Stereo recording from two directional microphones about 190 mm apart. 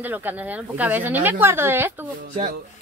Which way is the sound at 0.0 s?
10° right (ahead or behind).